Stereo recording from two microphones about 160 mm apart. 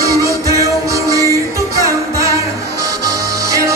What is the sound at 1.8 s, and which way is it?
Music, 20° right (ahead or behind).